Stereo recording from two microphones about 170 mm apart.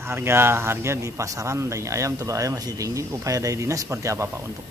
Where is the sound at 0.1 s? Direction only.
15° right (ahead or behind).